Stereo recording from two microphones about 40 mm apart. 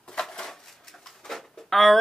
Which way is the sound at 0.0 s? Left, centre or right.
Centre.